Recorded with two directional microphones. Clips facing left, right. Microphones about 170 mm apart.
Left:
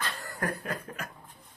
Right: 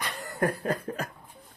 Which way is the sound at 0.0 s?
20° right (ahead or behind).